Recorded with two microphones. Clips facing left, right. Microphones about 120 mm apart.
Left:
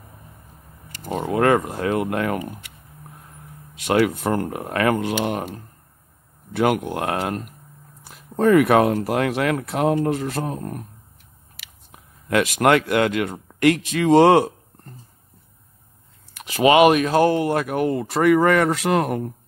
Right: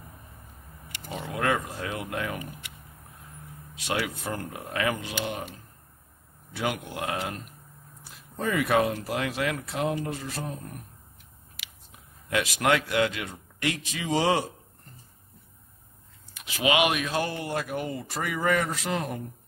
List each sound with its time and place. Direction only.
0.8 s speech: 40° left (ahead or behind)
3.8 s speech: 55° left (ahead or behind)
16.4 s speech: 45° left (ahead or behind); by 19.3 s 65° left (ahead or behind)